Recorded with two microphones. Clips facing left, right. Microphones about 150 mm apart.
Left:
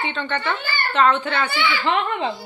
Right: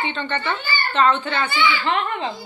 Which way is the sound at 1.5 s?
75° left (ahead or behind).